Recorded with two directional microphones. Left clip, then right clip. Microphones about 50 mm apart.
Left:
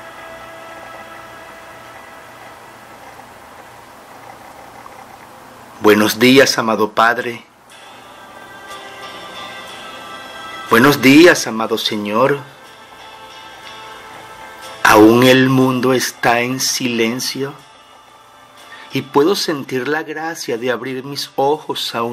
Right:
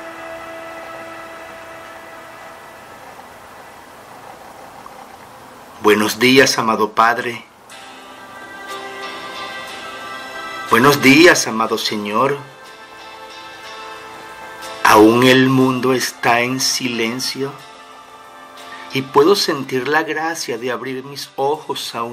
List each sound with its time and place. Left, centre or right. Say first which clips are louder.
5.8 s speech: left 2 dB; left
8.6 s music: right 4 dB; right
10.7 s speech: left 1 dB; left
13.7 s music: right 2 dB; right
14.8 s speech: left 1 dB; left
18.9 s speech: right 2 dB; left